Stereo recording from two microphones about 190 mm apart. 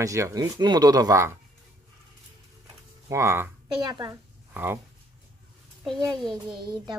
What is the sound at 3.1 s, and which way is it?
Speech, 15° right (ahead or behind).